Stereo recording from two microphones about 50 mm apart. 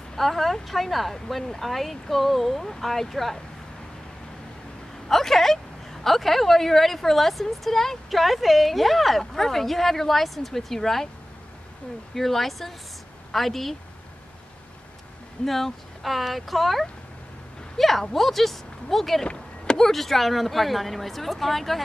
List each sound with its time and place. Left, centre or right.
0.1 s a woman's voice: centre
5.0 s vehicle: centre
6.0 s a woman's voice: centre
12.2 s a woman's voice: centre
15.4 s a woman's voice: centre
19.2 s a sound: centre
19.8 s a woman's voice: centre